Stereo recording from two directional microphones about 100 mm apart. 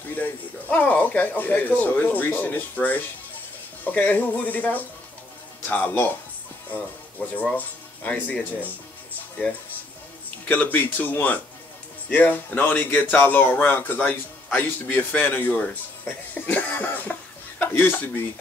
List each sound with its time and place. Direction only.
0.1 s speech: 15° left (ahead or behind)
10.5 s a man's voice: 15° left (ahead or behind)